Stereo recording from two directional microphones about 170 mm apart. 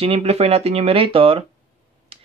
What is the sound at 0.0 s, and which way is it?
Speech, 35° right (ahead or behind).